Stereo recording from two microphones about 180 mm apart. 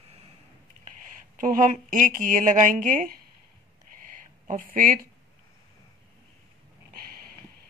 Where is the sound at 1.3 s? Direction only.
45° right (ahead or behind).